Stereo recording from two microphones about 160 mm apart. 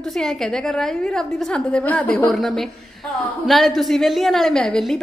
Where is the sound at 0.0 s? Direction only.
Centre (ahead or behind).